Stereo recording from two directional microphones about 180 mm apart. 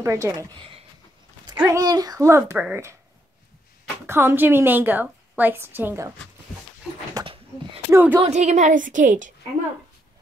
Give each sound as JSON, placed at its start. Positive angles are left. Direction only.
{"t": 0.0, "sound": "a woman's voice", "side_deg": -15}
{"t": 1.7, "sound": "a woman's voice", "side_deg": -20}
{"t": 4.0, "sound": "a woman's voice", "side_deg": -15}
{"t": 6.8, "sound": "dog", "side_deg": -5}
{"t": 7.2, "sound": "a sound", "side_deg": -30}
{"t": 7.9, "sound": "speech", "side_deg": -10}
{"t": 8.3, "sound": "a woman's voice", "side_deg": -40}